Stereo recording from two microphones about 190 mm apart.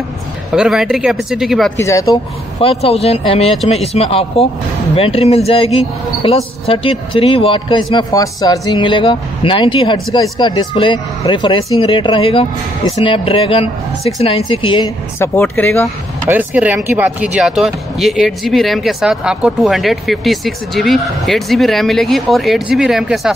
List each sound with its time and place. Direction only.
0.5 s speech: 5° right (ahead or behind)
1.8 s speech: 15° left (ahead or behind)
2.6 s speech: 30° left (ahead or behind)
15.1 s speech: 10° left (ahead or behind)
16.3 s speech: 10° right (ahead or behind)